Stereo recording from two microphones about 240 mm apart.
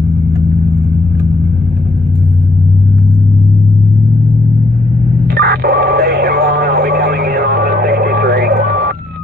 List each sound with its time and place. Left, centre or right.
5.3 s radio: right